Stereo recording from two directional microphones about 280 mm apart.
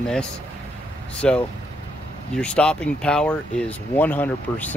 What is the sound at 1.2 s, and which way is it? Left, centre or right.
Speech, centre.